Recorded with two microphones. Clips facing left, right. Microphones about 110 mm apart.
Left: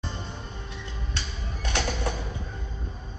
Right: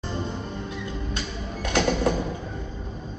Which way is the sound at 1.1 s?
45° right (ahead or behind).